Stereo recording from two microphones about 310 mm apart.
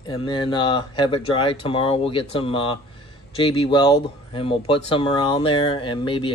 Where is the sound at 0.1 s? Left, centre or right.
Centre.